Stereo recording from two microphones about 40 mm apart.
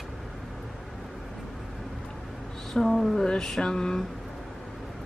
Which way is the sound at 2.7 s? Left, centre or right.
Centre.